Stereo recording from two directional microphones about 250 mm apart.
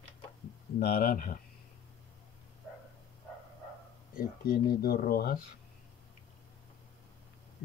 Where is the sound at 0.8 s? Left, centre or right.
Left.